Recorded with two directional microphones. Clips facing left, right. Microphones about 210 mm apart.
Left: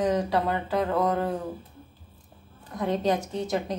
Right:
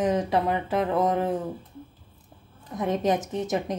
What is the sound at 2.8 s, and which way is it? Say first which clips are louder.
Speech: right 1 dB; 20° right (ahead or behind).